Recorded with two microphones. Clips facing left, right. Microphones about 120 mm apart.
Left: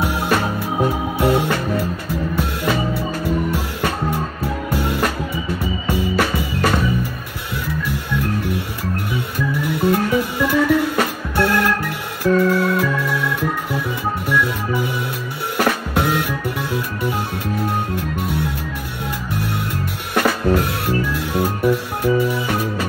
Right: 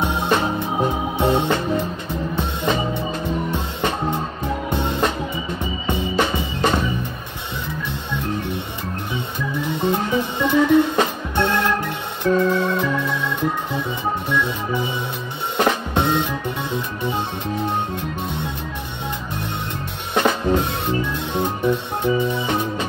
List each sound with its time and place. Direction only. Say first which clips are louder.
0.0 s music: left 1 dB; 25° right (ahead or behind)
9.7 s music: left 3 dB; 25° right (ahead or behind)
12.2 s organ: left 2 dB; 25° right (ahead or behind)
15.5 s drum: even; 20° right (ahead or behind)
20.2 s music: left 1 dB; 20° right (ahead or behind)